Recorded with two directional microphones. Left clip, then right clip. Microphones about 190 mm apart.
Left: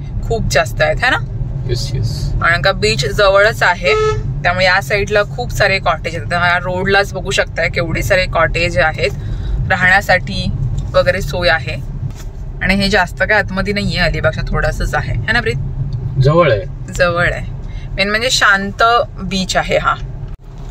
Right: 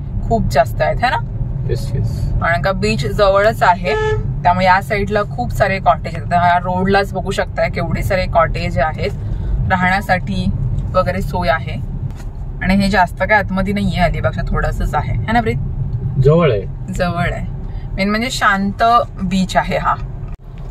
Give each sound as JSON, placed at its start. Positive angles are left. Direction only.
{"t": 0.3, "sound": "speech", "side_deg": 0}
{"t": 2.4, "sound": "speech", "side_deg": 0}
{"t": 17.0, "sound": "speech", "side_deg": 0}